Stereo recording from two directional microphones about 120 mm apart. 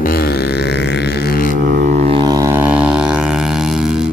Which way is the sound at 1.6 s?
90° right.